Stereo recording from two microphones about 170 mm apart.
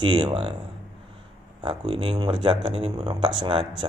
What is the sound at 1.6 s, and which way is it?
Speech, 30° right (ahead or behind).